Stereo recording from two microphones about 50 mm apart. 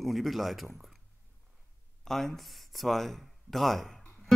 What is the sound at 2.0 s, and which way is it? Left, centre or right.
Speech, centre.